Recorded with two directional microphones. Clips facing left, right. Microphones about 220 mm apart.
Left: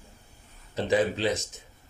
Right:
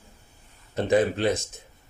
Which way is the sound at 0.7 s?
55° right (ahead or behind).